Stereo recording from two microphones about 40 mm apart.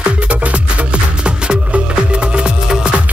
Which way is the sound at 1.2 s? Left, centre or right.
Right.